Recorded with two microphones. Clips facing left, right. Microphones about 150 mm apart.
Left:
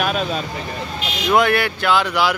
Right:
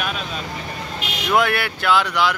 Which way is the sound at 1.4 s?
Centre (ahead or behind).